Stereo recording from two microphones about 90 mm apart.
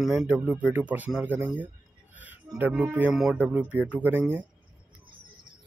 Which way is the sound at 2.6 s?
20° right (ahead or behind).